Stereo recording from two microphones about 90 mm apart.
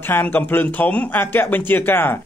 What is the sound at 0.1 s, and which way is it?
A man's voice, 20° left (ahead or behind).